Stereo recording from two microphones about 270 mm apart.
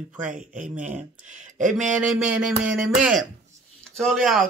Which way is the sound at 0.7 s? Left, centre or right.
Right.